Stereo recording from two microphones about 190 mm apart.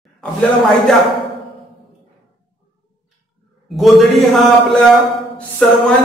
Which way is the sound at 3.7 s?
Centre (ahead or behind).